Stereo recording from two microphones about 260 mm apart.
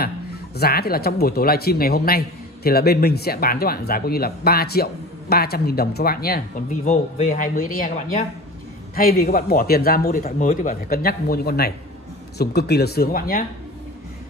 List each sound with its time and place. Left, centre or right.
0.6 s speech: left